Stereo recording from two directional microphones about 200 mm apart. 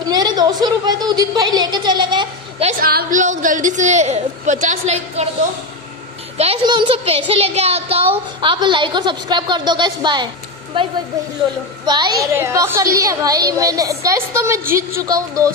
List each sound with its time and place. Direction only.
0.0 s a sound: 20° right (ahead or behind)
2.8 s a woman's voice: 50° right (ahead or behind); by 5.2 s 35° right (ahead or behind)
6.3 s a child's voice: 30° right (ahead or behind)
11.8 s a woman's voice: 20° right (ahead or behind)